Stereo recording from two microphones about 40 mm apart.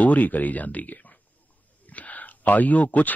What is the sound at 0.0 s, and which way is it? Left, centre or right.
Speech, left.